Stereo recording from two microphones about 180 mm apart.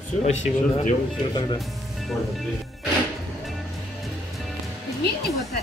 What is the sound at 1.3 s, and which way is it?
Speech, 25° left (ahead or behind).